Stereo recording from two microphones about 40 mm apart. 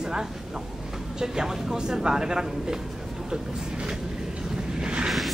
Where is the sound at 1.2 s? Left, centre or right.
Centre.